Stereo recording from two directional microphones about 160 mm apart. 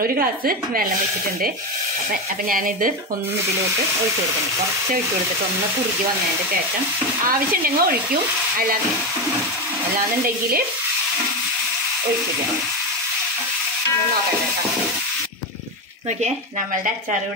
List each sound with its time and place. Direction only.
0.0 s speech: 65° right (ahead or behind)
2.5 s speech: 60° right (ahead or behind)
7.2 s speech: 65° right (ahead or behind)